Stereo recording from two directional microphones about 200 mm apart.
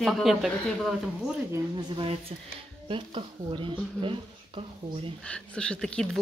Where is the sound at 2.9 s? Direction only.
25° right (ahead or behind).